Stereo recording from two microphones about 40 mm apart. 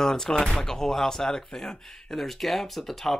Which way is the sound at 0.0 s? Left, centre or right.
Centre.